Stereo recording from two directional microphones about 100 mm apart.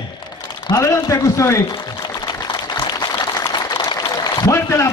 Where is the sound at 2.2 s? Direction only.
45° left (ahead or behind).